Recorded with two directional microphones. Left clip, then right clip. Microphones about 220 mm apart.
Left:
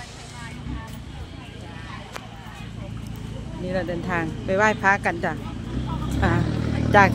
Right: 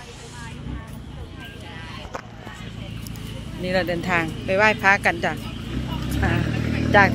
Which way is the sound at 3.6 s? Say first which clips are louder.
Right 4 dB; 5° right (ahead or behind).